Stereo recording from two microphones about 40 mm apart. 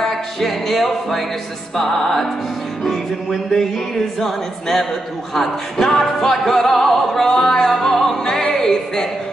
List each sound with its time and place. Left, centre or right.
0.0 s music: centre
8.2 s opera: centre
8.5 s a woman's voice: centre